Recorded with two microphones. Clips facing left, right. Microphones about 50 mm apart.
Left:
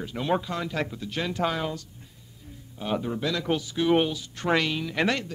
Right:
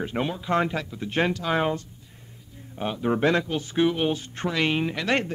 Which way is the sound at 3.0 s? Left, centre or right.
Right.